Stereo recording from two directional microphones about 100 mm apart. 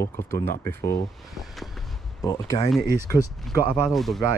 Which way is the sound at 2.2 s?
35° left (ahead or behind).